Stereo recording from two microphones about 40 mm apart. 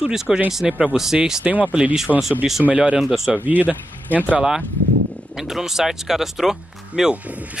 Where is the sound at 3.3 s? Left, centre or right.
Right.